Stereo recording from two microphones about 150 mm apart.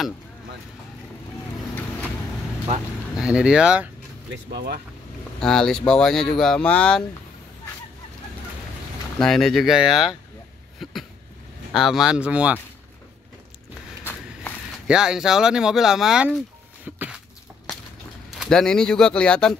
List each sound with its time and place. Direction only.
3.2 s speech: 5° right (ahead or behind)
4.5 s speech: 90° right
5.4 s speech: 5° left (ahead or behind)
9.2 s speech: centre (ahead or behind)
10.8 s a sound: centre (ahead or behind)
11.7 s speech: centre (ahead or behind)
14.9 s speech: 5° right (ahead or behind)
18.3 s speech: centre (ahead or behind)